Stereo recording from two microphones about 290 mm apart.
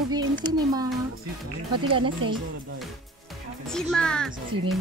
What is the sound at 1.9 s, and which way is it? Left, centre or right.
Speech, centre.